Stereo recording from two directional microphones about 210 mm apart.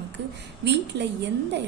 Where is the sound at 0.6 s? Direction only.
55° right (ahead or behind).